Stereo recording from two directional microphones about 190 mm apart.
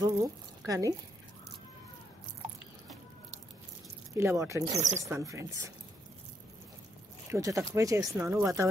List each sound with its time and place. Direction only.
0.0 s speech: 20° right (ahead or behind)
4.1 s speech: 15° right (ahead or behind)
4.7 s speech: 40° right (ahead or behind)
5.0 s speech: 15° right (ahead or behind)
7.2 s speech: 15° right (ahead or behind)